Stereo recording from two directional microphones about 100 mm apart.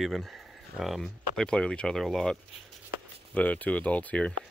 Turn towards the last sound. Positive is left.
turn(degrees=15)  # may be behind; listen again after turning